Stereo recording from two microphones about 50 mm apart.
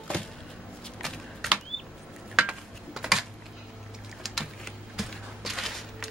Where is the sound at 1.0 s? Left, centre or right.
Centre.